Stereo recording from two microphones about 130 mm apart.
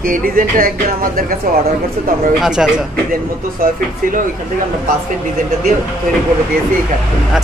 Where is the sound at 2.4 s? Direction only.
5° right (ahead or behind).